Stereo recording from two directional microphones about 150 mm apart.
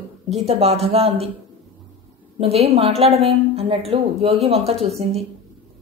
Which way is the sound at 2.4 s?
40° right (ahead or behind).